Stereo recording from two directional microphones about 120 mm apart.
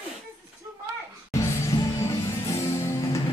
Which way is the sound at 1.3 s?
25° left (ahead or behind).